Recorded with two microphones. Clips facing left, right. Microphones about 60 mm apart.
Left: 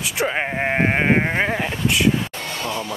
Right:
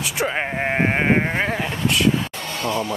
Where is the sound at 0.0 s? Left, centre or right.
Centre.